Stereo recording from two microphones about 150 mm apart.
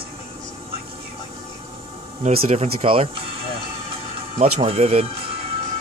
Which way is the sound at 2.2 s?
40° right (ahead or behind).